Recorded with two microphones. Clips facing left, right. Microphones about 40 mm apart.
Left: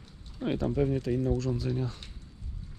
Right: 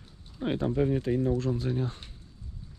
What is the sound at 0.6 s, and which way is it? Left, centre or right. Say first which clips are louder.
Speech: right 2 dB; right.